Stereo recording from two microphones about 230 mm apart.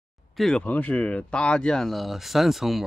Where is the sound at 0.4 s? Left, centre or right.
Centre.